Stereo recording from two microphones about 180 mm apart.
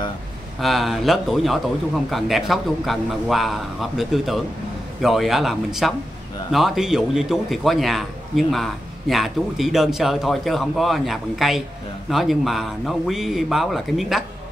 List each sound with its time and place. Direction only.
0.6 s speech: centre (ahead or behind)